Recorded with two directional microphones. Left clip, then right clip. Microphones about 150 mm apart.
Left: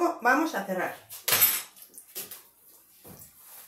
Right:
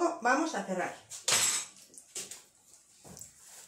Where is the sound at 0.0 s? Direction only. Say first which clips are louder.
Left 4 dB; 5° left (ahead or behind).